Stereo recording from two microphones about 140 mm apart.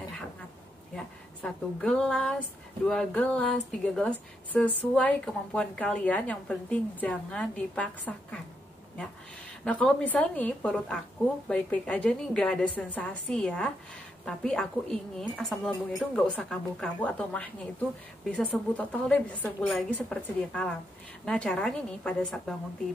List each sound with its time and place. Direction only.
0.9 s speech: 5° left (ahead or behind)
9.7 s a woman's voice: 5° left (ahead or behind)